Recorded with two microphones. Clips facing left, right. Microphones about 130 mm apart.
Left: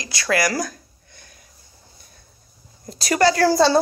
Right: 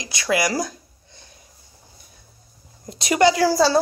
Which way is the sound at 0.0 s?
20° right (ahead or behind).